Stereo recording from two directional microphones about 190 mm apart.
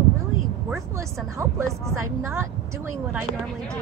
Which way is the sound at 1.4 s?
15° right (ahead or behind).